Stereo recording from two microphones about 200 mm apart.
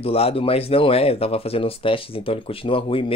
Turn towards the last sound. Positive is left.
turn(degrees=25)  # may be behind; listen again after turning